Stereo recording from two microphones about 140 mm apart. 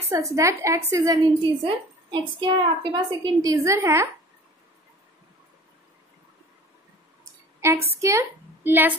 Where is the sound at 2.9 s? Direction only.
30° right (ahead or behind).